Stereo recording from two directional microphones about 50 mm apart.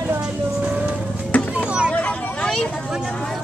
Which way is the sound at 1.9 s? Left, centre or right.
Left.